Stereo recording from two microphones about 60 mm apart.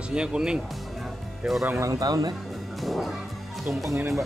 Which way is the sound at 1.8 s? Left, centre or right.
Right.